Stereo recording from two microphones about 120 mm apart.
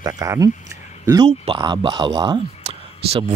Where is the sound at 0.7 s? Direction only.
30° right (ahead or behind).